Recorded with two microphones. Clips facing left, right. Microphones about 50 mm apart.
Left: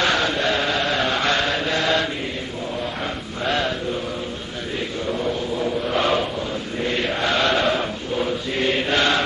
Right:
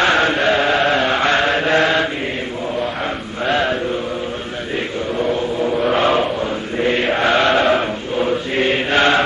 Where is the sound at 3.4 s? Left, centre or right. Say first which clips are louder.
Right 5 dB; right.